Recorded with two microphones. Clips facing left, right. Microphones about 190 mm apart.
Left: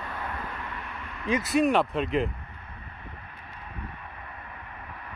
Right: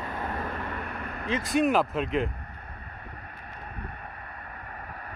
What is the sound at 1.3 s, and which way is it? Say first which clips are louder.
Speech: left 1 dB; 5° left (ahead or behind).